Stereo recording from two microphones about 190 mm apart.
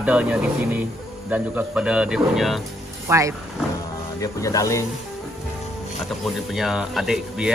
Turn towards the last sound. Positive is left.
turn(degrees=0)  # may be behind; listen again after turning